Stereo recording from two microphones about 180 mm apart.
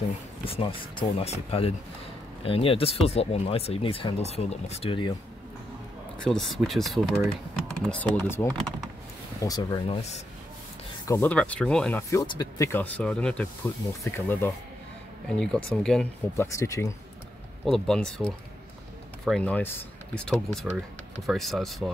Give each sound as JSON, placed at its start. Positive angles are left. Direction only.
{"t": 0.5, "sound": "speech", "side_deg": 30}
{"t": 6.2, "sound": "speech", "side_deg": 0}
{"t": 9.8, "sound": "speech", "side_deg": 35}
{"t": 11.1, "sound": "speech", "side_deg": 10}
{"t": 12.1, "sound": "speech", "side_deg": 20}
{"t": 16.5, "sound": "speech", "side_deg": 15}
{"t": 17.6, "sound": "speech", "side_deg": 0}